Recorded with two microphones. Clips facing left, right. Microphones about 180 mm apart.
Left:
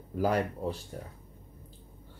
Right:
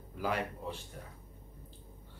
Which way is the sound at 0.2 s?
40° left (ahead or behind).